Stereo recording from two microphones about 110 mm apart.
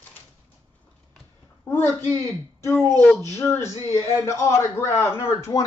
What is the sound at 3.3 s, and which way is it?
A man's voice, 25° left (ahead or behind).